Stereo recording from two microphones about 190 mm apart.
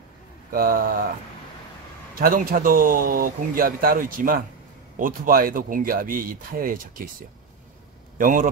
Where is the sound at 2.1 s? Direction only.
50° right (ahead or behind).